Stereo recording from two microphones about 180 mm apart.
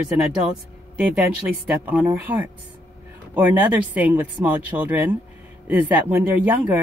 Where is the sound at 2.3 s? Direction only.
25° right (ahead or behind).